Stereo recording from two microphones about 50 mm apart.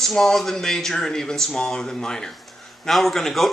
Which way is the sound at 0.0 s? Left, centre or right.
Centre.